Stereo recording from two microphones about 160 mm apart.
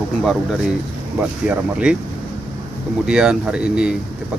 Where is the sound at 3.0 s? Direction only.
5° right (ahead or behind).